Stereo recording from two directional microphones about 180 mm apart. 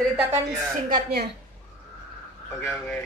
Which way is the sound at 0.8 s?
55° right (ahead or behind).